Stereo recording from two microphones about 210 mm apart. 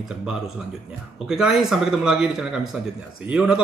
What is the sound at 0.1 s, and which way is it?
Speech, 5° right (ahead or behind).